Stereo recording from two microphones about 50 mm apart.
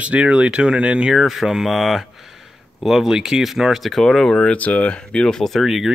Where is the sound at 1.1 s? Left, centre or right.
Centre.